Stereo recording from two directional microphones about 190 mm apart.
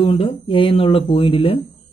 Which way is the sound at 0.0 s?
30° left (ahead or behind).